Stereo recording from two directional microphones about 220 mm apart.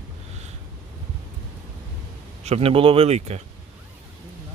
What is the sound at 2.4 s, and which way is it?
Speech, 25° right (ahead or behind).